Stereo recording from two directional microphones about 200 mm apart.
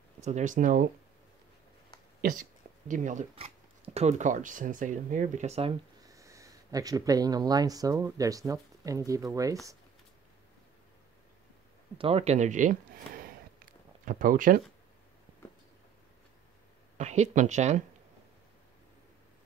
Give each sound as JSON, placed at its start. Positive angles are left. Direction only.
{"t": 0.2, "sound": "speech", "side_deg": -35}
{"t": 2.9, "sound": "speech", "side_deg": -40}
{"t": 6.0, "sound": "speech", "side_deg": -15}
{"t": 12.0, "sound": "speech", "side_deg": -30}
{"t": 16.9, "sound": "speech", "side_deg": -35}